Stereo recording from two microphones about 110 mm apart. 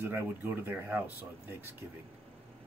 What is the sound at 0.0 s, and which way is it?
Speech, 15° right (ahead or behind).